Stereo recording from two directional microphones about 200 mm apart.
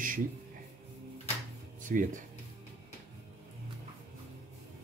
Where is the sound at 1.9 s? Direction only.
40° right (ahead or behind).